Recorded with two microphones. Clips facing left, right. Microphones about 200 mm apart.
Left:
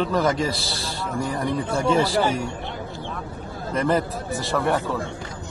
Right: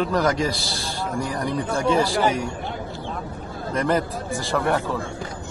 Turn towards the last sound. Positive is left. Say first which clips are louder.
# even
turn(degrees=0)  # may be behind; listen again after turning